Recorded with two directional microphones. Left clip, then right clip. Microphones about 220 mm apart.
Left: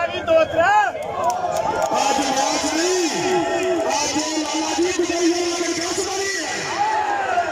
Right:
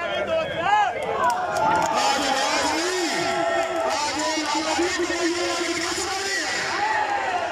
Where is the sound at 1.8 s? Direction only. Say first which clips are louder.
Left 2 dB; 15° left (ahead or behind).